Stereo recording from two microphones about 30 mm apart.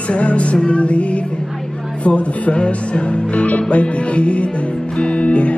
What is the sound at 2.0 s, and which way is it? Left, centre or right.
Speech, left.